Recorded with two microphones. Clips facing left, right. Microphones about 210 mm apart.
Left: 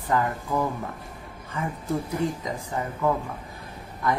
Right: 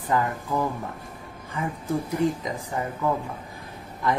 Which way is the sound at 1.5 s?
15° right (ahead or behind).